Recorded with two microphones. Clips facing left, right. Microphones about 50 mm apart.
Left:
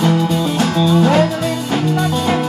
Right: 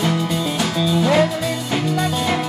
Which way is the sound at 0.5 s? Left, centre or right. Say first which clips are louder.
Left 6 dB; left.